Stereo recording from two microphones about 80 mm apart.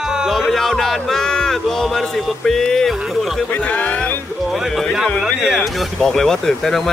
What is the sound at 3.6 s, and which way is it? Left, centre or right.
Music, centre.